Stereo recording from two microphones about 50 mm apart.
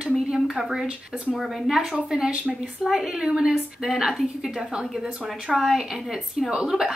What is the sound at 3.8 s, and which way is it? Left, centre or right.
A woman's voice, centre.